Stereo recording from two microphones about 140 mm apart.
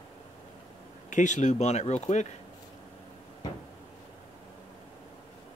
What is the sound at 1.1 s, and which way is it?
Speech, 60° left (ahead or behind).